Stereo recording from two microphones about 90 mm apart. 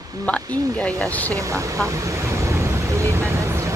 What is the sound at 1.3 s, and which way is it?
Vehicle, 35° right (ahead or behind).